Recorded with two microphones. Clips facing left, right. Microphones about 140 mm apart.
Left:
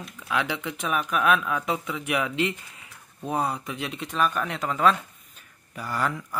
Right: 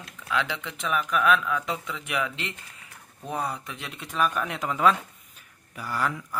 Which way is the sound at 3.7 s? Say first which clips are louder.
Left 6 dB; 5° left (ahead or behind).